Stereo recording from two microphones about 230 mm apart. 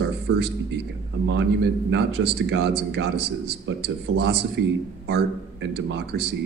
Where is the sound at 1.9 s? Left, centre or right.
Right.